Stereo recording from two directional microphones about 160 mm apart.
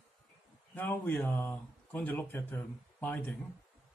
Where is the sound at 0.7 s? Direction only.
10° left (ahead or behind).